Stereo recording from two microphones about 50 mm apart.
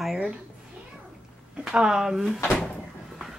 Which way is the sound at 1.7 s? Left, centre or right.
Centre.